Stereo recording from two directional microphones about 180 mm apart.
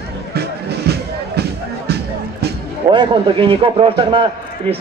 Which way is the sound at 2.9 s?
25° right (ahead or behind).